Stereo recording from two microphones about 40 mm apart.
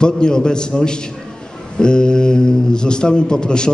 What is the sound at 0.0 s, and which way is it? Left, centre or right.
A man's voice, centre.